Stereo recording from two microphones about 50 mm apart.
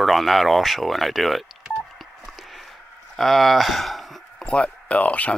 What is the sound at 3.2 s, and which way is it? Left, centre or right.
Speech, centre.